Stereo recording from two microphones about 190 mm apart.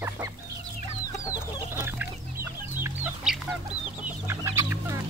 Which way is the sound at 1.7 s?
15° right (ahead or behind).